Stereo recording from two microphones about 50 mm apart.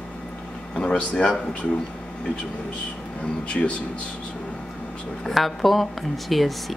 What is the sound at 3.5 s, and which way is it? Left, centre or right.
Speech, left.